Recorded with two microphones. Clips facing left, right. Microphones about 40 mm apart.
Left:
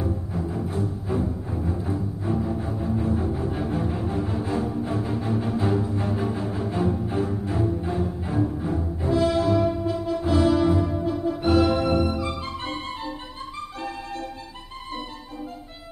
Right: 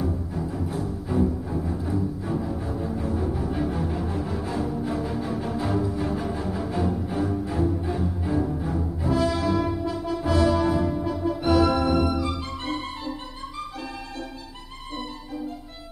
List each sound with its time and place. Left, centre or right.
0.0 s music: left
9.2 s brass instrument: left
10.8 s music: right
11.4 s organ: left
12.2 s music: left